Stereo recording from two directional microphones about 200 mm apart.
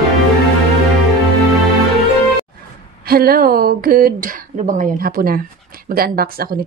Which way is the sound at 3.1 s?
50° right (ahead or behind).